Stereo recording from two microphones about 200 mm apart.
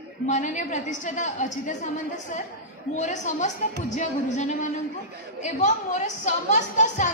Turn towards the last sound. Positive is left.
turn(degrees=35)  # may be behind; listen again after turning